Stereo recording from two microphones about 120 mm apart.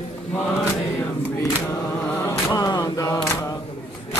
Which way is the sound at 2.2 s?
25° left (ahead or behind).